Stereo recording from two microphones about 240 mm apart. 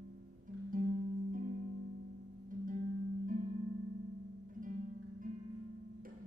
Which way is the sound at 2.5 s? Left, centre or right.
Right.